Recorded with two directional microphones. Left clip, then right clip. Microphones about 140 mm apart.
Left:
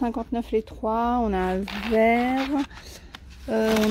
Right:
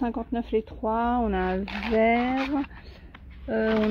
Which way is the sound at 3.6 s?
90° left.